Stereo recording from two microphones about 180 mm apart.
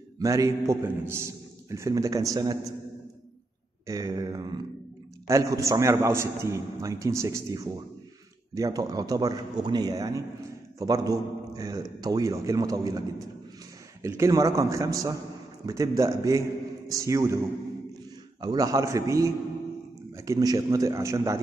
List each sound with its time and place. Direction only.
0.2 s a man's voice: 20° right (ahead or behind)
3.8 s a man's voice: 20° right (ahead or behind)
14.0 s a man's voice: 15° right (ahead or behind)
18.4 s a man's voice: 20° right (ahead or behind)